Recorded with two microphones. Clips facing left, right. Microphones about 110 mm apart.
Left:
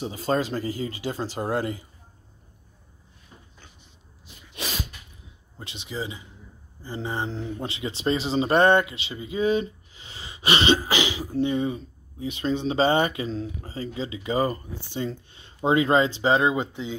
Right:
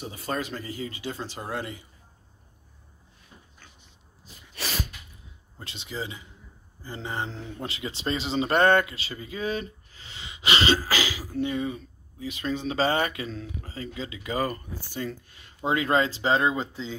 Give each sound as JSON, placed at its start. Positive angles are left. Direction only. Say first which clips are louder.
{"t": 0.0, "sound": "speech", "louder": "left 6 dB", "side_deg": 25}
{"t": 5.6, "sound": "speech", "louder": "left 2 dB", "side_deg": 20}